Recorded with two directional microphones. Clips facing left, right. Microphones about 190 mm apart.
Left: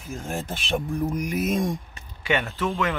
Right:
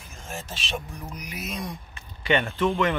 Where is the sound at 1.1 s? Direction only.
50° left (ahead or behind).